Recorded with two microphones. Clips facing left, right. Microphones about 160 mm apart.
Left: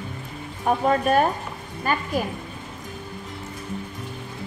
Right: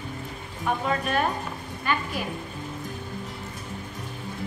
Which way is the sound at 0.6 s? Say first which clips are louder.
Left 6 dB; 40° left (ahead or behind).